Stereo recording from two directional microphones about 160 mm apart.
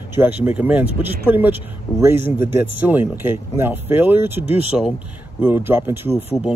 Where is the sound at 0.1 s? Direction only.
10° right (ahead or behind).